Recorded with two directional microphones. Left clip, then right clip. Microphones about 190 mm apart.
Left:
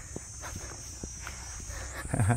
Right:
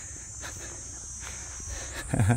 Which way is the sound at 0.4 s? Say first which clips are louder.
Right 4 dB; 40° right (ahead or behind).